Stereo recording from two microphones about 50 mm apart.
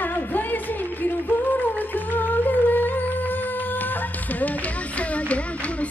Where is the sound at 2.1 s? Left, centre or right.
Left.